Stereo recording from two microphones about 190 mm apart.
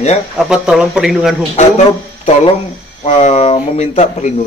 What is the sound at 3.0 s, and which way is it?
Speech, 35° left (ahead or behind).